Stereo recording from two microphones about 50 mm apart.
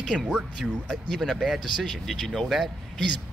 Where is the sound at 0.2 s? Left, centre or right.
Centre.